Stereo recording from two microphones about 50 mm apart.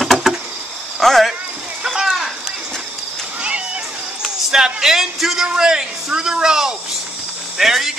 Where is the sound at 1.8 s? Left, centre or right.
Centre.